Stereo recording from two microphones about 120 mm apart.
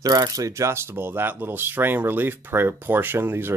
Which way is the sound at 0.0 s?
30° right (ahead or behind).